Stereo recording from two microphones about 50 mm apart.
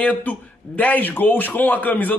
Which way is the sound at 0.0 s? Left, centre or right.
Left.